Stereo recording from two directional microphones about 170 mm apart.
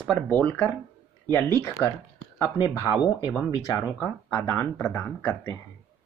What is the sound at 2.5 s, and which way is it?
Speech, 25° left (ahead or behind).